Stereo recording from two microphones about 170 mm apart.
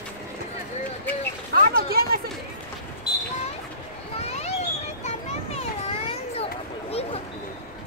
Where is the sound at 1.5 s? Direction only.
60° right (ahead or behind).